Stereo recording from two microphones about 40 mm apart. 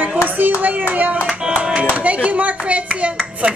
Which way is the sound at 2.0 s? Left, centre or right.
Right.